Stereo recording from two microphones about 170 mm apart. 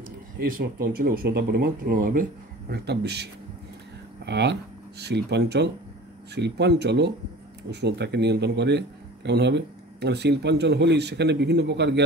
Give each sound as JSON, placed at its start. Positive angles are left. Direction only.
{"t": 0.4, "sound": "speech", "side_deg": -60}
{"t": 2.7, "sound": "a man's voice", "side_deg": -75}
{"t": 4.3, "sound": "a man's voice", "side_deg": -80}